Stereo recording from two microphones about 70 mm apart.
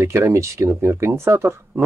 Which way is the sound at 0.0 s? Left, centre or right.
Right.